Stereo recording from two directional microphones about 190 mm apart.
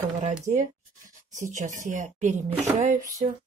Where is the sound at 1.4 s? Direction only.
40° right (ahead or behind).